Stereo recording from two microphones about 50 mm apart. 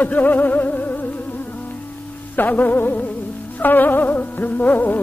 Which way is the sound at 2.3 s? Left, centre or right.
Left.